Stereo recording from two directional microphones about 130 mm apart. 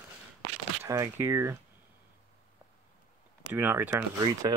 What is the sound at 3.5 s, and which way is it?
Speech, 15° right (ahead or behind).